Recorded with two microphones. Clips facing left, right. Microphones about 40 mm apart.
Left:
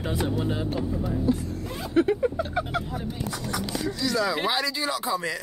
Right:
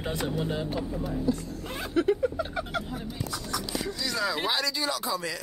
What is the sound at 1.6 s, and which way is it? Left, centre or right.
Speech, right.